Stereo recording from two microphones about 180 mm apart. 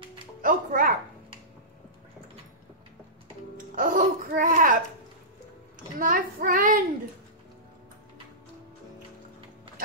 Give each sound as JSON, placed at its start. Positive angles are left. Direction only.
{"t": 0.4, "sound": "speech", "side_deg": -50}
{"t": 3.5, "sound": "music", "side_deg": -50}
{"t": 5.9, "sound": "child singing", "side_deg": -50}